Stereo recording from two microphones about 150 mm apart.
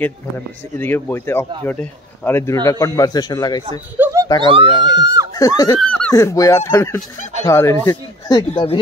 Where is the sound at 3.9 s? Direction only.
15° right (ahead or behind).